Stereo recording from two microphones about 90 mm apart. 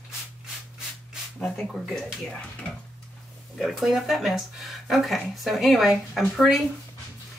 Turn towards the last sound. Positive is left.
turn(degrees=0)  # may be behind; listen again after turning